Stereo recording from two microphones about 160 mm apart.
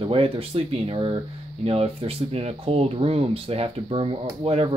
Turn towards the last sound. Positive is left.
turn(degrees=-40)  # may be behind; listen again after turning